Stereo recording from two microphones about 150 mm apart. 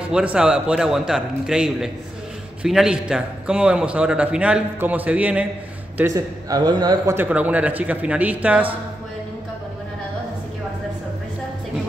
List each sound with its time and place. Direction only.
0.1 s a man's voice: 5° right (ahead or behind)
5.9 s speech: 20° right (ahead or behind)
7.2 s a man's voice: 10° right (ahead or behind)